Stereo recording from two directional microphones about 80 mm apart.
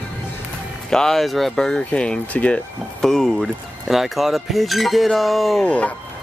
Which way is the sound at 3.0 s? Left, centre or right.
Centre.